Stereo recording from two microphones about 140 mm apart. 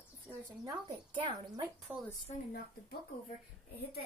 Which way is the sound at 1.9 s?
15° right (ahead or behind).